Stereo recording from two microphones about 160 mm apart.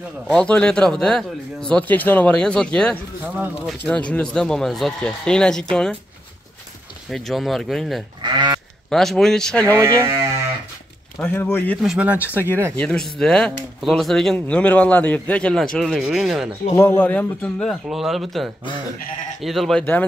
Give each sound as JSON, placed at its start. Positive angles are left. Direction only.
{"t": 0.3, "sound": "speech", "side_deg": 5}
{"t": 7.1, "sound": "speech", "side_deg": 0}
{"t": 8.2, "sound": "sheep", "side_deg": -30}
{"t": 8.9, "sound": "speech", "side_deg": 0}
{"t": 9.8, "sound": "speech", "side_deg": -15}
{"t": 11.1, "sound": "a man's voice", "side_deg": 10}
{"t": 11.8, "sound": "speech", "side_deg": -5}
{"t": 12.7, "sound": "speech", "side_deg": 5}
{"t": 16.7, "sound": "speech", "side_deg": 15}